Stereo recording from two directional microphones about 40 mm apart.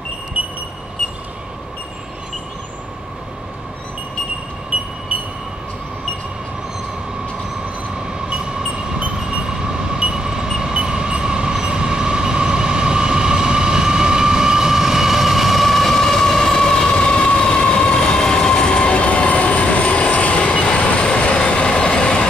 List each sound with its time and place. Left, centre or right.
0.4 s wind chime: right
4.7 s wind chime: right
8.3 s vehicle: right
11.6 s train: centre; by 22.3 s left